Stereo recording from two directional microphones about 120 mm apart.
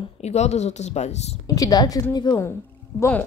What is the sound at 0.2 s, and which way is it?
Speech, 65° left (ahead or behind).